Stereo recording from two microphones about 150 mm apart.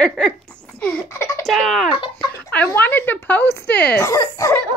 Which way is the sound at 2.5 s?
10° left (ahead or behind).